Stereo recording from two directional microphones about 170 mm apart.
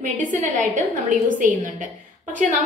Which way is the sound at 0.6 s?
50° right (ahead or behind).